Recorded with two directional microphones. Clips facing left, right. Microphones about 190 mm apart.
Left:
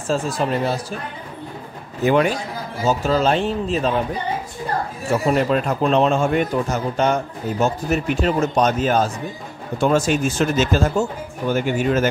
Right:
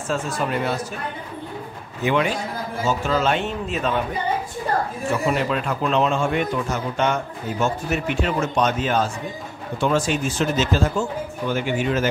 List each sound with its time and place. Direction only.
0.1 s a man's voice: 35° left (ahead or behind)
2.0 s a man's voice: 45° left (ahead or behind)
5.2 s a man's voice: 40° left (ahead or behind)